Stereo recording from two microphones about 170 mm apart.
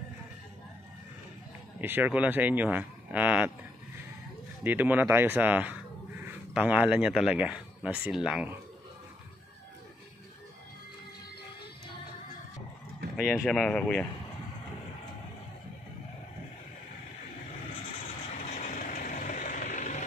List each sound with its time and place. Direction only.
1.8 s speech: 10° right (ahead or behind)
4.6 s speech: 10° right (ahead or behind)
13.1 s speech: 5° right (ahead or behind)
18.4 s vehicle: 45° left (ahead or behind)